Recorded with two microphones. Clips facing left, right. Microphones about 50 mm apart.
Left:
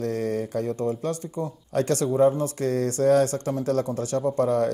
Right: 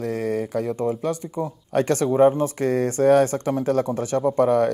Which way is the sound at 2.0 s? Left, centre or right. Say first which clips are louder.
Right 4 dB; right.